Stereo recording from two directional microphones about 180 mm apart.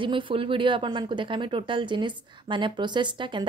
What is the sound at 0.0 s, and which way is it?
A woman's voice, 30° right (ahead or behind).